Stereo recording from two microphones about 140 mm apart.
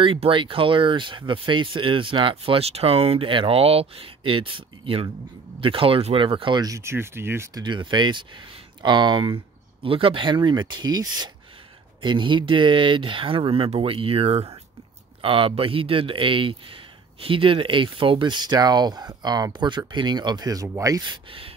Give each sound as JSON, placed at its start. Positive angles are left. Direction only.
{"t": 0.0, "sound": "speech", "side_deg": -40}
{"t": 7.6, "sound": "speech", "side_deg": -35}